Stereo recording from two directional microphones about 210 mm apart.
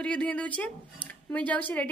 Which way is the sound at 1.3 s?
10° left (ahead or behind).